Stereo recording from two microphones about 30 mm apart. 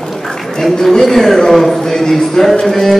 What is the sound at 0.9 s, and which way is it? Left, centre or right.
Speech, centre.